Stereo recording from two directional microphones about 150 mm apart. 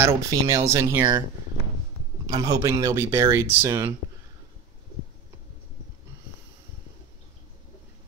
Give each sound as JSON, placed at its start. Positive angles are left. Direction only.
{"t": 0.0, "sound": "speech", "side_deg": -20}
{"t": 2.2, "sound": "speech", "side_deg": -25}